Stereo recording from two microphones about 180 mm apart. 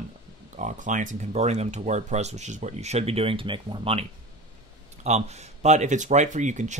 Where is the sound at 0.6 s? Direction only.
45° right (ahead or behind).